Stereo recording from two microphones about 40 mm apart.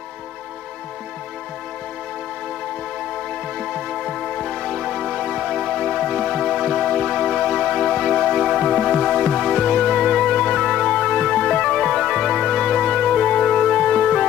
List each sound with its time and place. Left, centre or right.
3.5 s music: centre
6.3 s music: centre
8.3 s music: centre
9.9 s music: centre
11.8 s music: centre; by 13.6 s left
13.6 s music: centre